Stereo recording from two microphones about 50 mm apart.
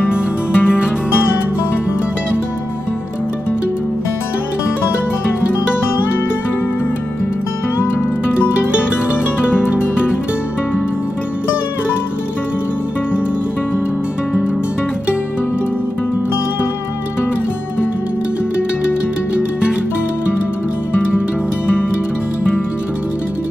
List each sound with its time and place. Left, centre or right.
0.0 s music: left